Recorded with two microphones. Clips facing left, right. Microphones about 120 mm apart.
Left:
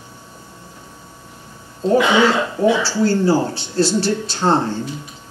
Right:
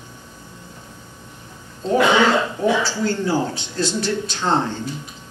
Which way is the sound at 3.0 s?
35° left (ahead or behind).